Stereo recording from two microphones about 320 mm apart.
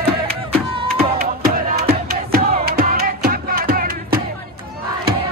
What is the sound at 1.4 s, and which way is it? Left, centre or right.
Music, right.